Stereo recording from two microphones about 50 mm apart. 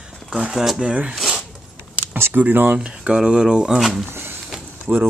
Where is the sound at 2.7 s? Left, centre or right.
Right.